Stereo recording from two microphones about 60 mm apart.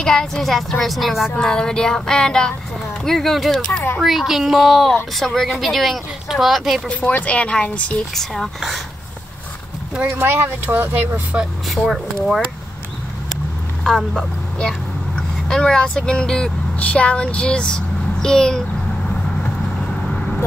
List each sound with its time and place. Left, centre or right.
0.0 s a woman's voice: centre
1.3 s a woman's voice: centre
6.9 s speech: left
8.5 s a woman's voice: centre
10.0 s speech: right
11.3 s speech: right
11.7 s a woman's voice: centre
13.8 s a child's voice: centre